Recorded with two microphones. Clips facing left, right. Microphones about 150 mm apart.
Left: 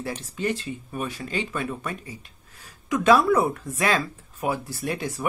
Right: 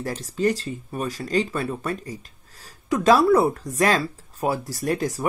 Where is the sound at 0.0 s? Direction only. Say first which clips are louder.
Right 5 dB; 40° right (ahead or behind).